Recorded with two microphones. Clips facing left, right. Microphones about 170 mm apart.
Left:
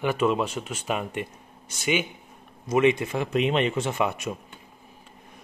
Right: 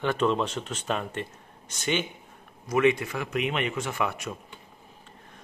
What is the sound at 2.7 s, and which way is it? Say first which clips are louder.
Speech: left 2 dB; 20° left (ahead or behind).